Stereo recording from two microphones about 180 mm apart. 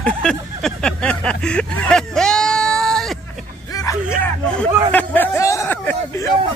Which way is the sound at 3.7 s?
20° left (ahead or behind).